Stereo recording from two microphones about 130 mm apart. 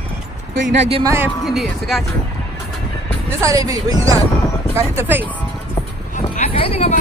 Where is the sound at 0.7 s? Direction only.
45° right (ahead or behind).